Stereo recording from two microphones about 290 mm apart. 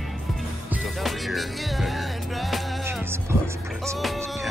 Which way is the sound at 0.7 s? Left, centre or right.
Centre.